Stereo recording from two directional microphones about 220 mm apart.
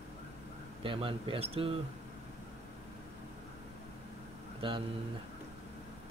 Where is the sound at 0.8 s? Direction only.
25° right (ahead or behind).